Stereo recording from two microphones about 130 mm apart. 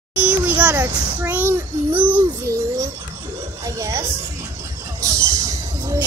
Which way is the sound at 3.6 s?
25° right (ahead or behind).